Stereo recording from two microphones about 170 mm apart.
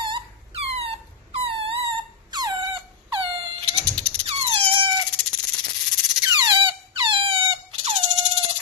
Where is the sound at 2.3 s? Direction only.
25° right (ahead or behind).